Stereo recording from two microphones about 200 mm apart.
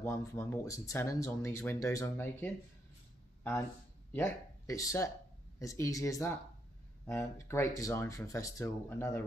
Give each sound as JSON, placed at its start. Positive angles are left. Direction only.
{"t": 0.0, "sound": "speech", "side_deg": 15}
{"t": 4.1, "sound": "speech", "side_deg": 15}